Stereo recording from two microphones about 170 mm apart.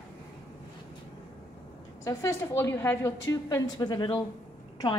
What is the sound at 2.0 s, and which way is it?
A woman's voice, 15° left (ahead or behind).